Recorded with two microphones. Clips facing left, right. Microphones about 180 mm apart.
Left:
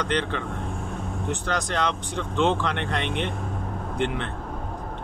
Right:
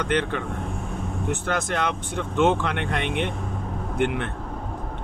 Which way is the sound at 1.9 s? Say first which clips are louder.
Right 1 dB; 15° right (ahead or behind).